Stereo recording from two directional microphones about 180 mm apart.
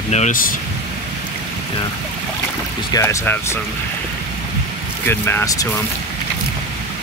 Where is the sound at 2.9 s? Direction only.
15° left (ahead or behind).